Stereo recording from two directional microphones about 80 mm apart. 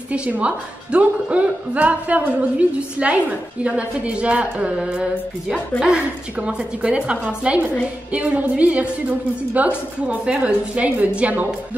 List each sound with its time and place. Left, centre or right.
0.1 s a woman's voice: centre